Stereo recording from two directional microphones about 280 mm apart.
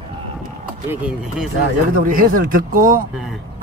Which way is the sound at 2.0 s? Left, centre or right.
Right.